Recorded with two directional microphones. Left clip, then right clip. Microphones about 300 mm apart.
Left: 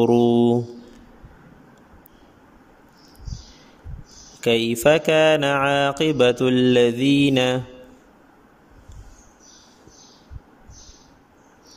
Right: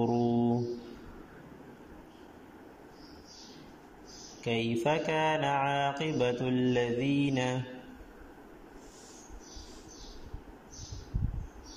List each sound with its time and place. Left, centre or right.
0.0 s mantra: left
4.4 s mantra: left